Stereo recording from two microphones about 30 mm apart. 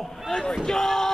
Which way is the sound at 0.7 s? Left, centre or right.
Centre.